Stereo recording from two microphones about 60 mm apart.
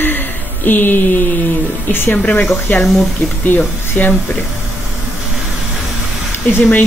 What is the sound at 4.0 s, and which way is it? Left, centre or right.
Speech, left.